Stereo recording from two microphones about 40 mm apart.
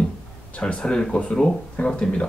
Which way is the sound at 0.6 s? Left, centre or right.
Left.